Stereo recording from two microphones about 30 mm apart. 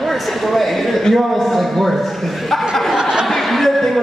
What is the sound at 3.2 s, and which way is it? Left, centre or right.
Chuckle, centre.